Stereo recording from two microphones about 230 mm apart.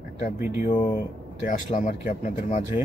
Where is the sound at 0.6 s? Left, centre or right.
Left.